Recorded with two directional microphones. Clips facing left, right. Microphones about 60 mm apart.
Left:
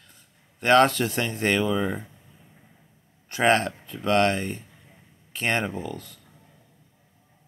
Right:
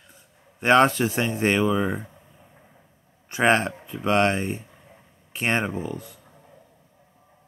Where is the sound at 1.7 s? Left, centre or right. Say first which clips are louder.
Right 2 dB; centre.